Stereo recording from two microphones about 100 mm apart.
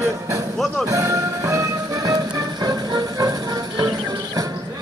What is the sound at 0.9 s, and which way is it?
Music, 30° right (ahead or behind).